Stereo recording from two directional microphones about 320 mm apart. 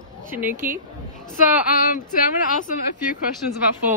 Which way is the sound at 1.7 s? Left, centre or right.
Left.